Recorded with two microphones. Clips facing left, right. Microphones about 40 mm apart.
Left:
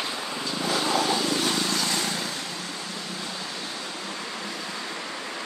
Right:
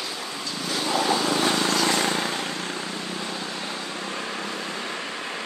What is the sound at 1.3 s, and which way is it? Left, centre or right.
Vehicle, right.